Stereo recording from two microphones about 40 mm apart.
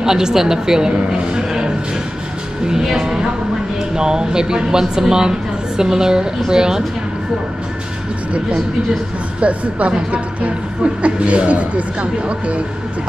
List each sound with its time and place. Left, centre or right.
0.0 s a man's voice: centre
9.4 s speech: right
11.0 s speech: right